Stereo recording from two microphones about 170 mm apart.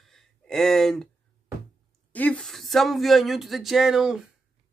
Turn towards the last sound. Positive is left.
turn(degrees=-5)  # may be behind; listen again after turning